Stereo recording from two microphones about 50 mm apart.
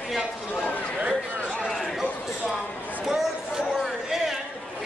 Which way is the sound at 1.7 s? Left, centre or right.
Centre.